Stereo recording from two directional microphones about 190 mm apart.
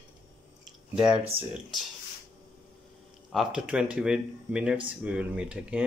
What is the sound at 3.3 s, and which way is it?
Speech, centre (ahead or behind).